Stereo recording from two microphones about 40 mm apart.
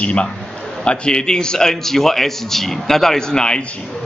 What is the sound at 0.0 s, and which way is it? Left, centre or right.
A man's voice, left.